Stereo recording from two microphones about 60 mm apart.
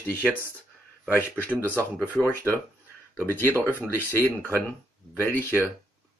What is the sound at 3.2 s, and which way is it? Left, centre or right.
Speech, left.